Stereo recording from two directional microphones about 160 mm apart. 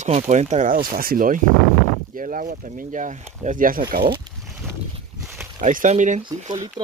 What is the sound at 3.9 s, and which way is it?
Speech, 70° right (ahead or behind).